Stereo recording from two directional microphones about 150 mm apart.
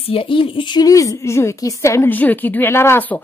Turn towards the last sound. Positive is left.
turn(degrees=15)  # may be behind; listen again after turning